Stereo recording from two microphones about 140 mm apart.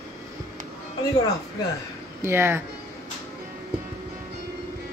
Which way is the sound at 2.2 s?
15° right (ahead or behind).